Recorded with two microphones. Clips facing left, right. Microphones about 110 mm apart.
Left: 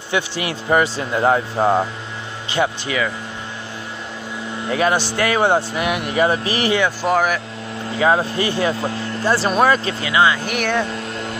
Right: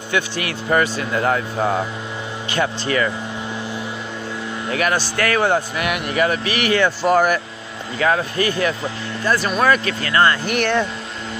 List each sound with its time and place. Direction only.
0.1 s speech: 20° left (ahead or behind)
4.6 s speech: 25° left (ahead or behind)
6.8 s speech: centre (ahead or behind)
8.0 s speech: 25° left (ahead or behind)
10.0 s speech: 10° left (ahead or behind)